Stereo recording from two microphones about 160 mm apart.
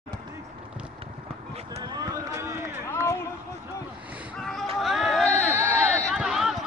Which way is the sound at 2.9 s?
15° left (ahead or behind).